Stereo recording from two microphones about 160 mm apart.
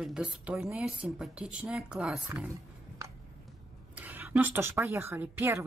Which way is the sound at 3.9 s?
10° right (ahead or behind).